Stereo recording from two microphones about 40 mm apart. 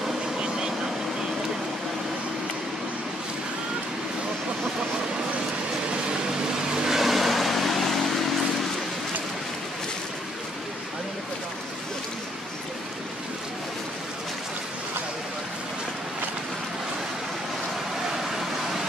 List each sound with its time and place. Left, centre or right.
0.4 s vehicle: centre
6.7 s vehicle: centre